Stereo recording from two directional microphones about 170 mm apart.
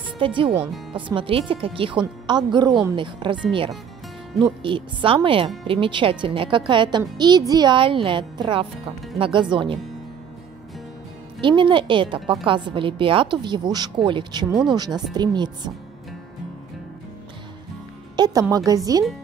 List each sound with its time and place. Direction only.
0.2 s a woman's voice: 30° right (ahead or behind)
4.4 s a woman's voice: 30° right (ahead or behind)
11.4 s a woman's voice: 30° right (ahead or behind)
18.1 s a woman's voice: 25° right (ahead or behind)